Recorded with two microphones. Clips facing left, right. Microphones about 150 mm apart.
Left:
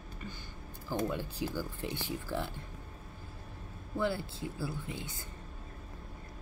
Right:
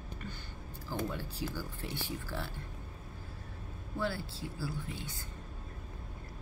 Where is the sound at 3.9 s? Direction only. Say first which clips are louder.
Left 3 dB; 20° left (ahead or behind).